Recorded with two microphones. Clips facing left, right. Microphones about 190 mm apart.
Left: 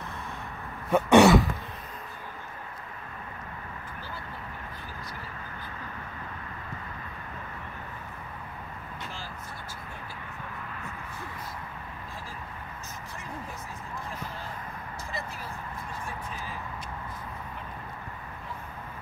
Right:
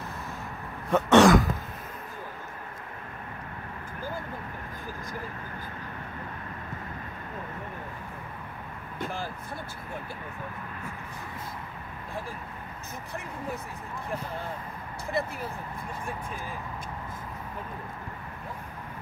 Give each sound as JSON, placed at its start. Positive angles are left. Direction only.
{"t": 0.8, "sound": "throat clearing", "side_deg": 10}
{"t": 9.0, "sound": "vehicle", "side_deg": -55}
{"t": 15.2, "sound": "vehicle", "side_deg": -60}